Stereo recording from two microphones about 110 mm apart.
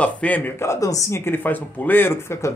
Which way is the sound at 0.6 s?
30° left (ahead or behind).